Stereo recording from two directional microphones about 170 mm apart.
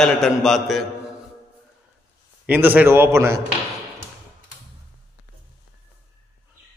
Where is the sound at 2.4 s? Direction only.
10° right (ahead or behind).